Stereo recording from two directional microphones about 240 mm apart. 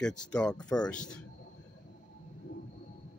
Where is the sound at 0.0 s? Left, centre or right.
Centre.